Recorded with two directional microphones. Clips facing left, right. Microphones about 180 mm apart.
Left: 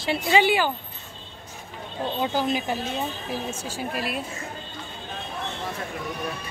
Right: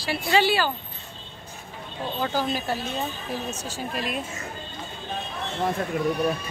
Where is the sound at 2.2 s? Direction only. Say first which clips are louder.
Left 1 dB; 15° left (ahead or behind).